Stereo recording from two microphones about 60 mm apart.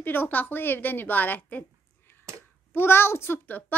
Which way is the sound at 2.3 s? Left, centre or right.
Right.